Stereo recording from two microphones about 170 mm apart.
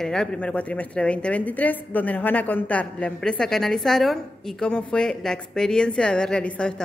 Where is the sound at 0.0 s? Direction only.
5° left (ahead or behind).